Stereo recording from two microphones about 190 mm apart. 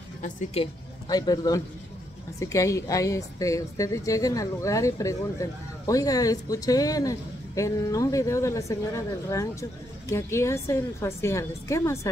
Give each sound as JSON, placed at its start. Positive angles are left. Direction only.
{"t": 0.2, "sound": "a woman's voice", "side_deg": 40}
{"t": 1.0, "sound": "a man's voice", "side_deg": 20}